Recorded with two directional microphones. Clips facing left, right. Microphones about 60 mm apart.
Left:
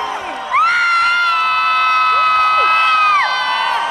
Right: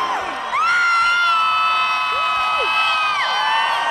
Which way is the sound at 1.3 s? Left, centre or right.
Left.